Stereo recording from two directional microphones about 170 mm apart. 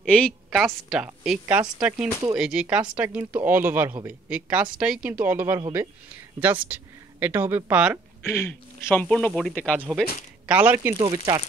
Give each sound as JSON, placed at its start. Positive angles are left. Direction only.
{"t": 0.0, "sound": "a woman's voice", "side_deg": 5}
{"t": 8.3, "sound": "speech", "side_deg": 10}
{"t": 9.8, "sound": "speech", "side_deg": -5}
{"t": 11.0, "sound": "speech", "side_deg": -25}